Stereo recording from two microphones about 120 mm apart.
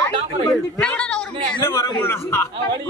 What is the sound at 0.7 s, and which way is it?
Speech, 10° left (ahead or behind).